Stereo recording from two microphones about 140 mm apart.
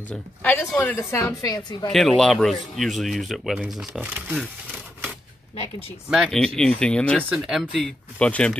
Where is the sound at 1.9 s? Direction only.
Centre (ahead or behind).